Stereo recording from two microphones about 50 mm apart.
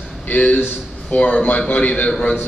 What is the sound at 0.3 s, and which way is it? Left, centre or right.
A man's voice, left.